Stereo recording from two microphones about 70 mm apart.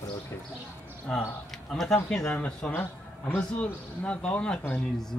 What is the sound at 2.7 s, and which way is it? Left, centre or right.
Speech, left.